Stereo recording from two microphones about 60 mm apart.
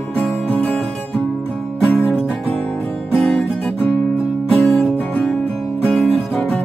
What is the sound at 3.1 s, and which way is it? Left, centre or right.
Music, centre.